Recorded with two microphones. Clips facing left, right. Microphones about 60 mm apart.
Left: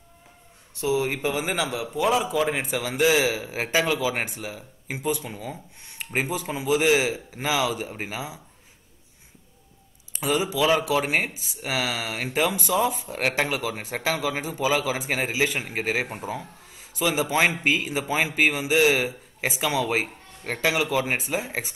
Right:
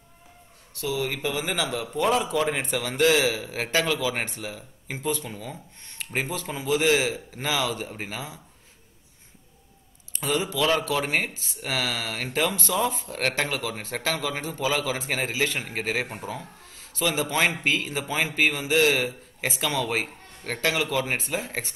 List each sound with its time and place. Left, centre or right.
0.7 s speech: left
1.4 s a man's voice: centre
10.1 s a man's voice: centre